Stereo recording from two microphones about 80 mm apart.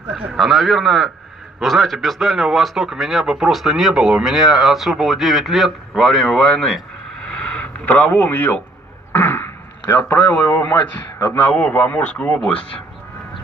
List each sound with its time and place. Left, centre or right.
0.3 s speech: centre
7.2 s radio: centre
9.1 s a sound: left
10.0 s a man's voice: left